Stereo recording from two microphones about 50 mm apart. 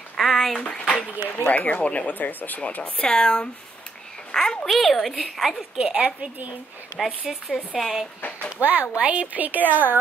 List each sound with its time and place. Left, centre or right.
0.2 s a sound: centre
0.6 s speech: centre
1.4 s speech: left
2.8 s speech: centre
4.3 s a sound: centre
4.6 s a woman's voice: centre
5.8 s a woman's voice: centre
6.0 s a woman's voice: right
7.3 s a woman's voice: centre
8.5 s a woman's voice: right